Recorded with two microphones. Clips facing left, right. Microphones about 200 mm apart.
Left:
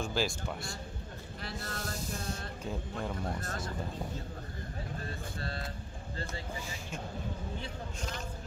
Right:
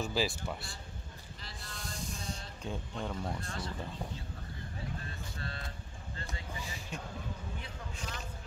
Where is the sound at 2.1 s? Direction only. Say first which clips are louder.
Left 4 dB; 55° left (ahead or behind).